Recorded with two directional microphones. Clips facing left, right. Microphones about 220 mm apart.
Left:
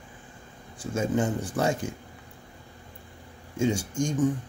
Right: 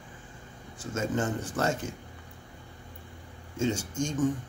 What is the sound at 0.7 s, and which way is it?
Speech, 10° left (ahead or behind).